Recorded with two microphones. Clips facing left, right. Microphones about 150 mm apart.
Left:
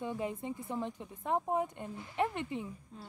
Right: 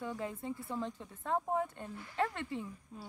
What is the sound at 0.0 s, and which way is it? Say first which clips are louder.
Speech: left 3 dB; 20° left (ahead or behind).